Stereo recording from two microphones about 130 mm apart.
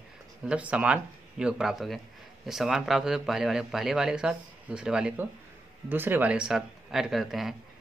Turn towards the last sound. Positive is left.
turn(degrees=0)  # may be behind; listen again after turning